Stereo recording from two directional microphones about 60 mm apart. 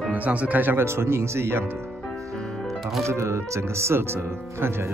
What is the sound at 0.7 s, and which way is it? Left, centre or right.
Speech, right.